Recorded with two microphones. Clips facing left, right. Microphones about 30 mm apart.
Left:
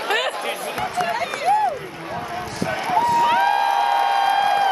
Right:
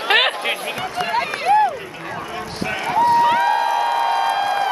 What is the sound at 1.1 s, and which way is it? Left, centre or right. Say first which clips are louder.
Run: right 5 dB; right.